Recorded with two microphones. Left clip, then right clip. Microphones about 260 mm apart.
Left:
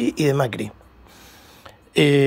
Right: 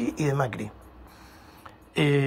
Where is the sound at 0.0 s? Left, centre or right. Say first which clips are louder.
Left 7 dB; left.